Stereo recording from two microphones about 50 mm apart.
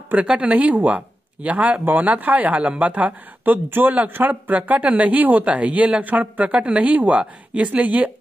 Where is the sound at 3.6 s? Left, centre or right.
Right.